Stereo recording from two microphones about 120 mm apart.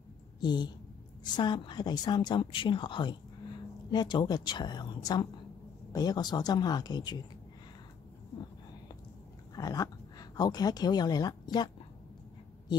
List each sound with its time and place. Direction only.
0.4 s a woman's voice: 35° left (ahead or behind)
9.6 s speech: 30° left (ahead or behind)